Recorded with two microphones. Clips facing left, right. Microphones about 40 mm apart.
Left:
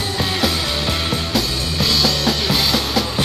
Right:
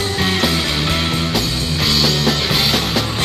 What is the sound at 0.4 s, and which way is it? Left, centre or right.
Music, right.